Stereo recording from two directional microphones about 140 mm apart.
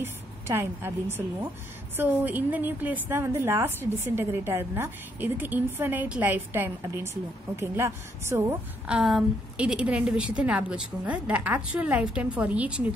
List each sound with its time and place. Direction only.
0.0 s a woman's voice: 15° right (ahead or behind)
8.8 s a woman's voice: 5° right (ahead or behind)